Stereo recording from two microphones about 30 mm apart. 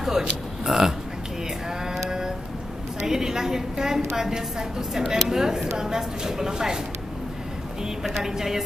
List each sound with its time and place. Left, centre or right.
0.7 s a woman's voice: centre
2.0 s a sound: right
4.4 s a woman's voice: centre
8.2 s a woman's voice: centre